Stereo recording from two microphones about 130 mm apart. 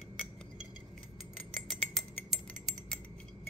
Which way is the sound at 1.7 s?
Centre (ahead or behind).